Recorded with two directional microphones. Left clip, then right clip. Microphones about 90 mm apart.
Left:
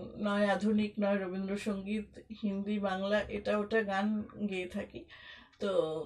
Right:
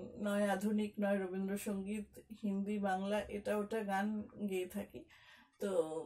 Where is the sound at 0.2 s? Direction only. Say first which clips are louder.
Left 5 dB; 40° right (ahead or behind).